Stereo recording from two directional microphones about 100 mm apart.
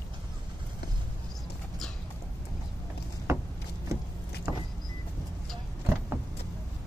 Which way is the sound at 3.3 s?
30° right (ahead or behind).